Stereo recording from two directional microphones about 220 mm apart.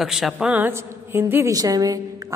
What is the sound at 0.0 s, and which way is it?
A woman's voice, centre (ahead or behind).